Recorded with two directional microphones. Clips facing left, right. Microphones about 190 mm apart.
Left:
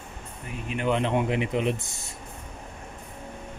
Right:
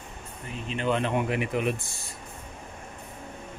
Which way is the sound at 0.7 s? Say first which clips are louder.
Left 1 dB; 15° left (ahead or behind).